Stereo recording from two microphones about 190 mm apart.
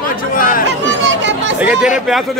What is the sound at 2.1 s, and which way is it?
Speech, centre (ahead or behind).